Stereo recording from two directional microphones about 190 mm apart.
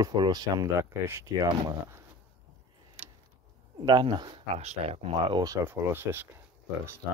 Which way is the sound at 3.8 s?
25° right (ahead or behind).